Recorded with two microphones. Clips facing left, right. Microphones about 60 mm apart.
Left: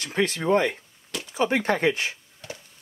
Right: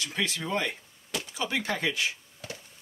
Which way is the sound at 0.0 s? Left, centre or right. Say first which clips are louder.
Left 7 dB; left.